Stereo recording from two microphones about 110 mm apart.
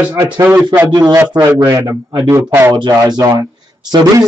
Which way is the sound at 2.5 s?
20° right (ahead or behind).